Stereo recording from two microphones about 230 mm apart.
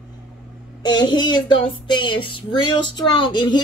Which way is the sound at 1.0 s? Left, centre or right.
Centre.